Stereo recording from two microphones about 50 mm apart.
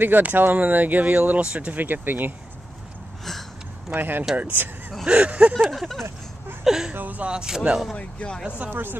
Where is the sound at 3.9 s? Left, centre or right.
Right.